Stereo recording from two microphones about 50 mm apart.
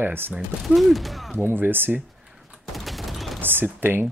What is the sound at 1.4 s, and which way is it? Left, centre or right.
Speech, right.